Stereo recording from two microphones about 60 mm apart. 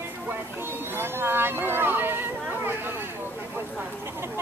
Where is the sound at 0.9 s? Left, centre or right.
Right.